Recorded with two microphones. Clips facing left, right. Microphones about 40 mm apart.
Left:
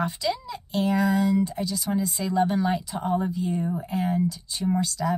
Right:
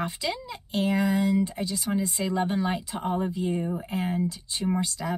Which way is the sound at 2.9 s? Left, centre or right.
Right.